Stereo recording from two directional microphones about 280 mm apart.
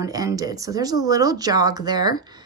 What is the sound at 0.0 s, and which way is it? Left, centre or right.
Speech, centre.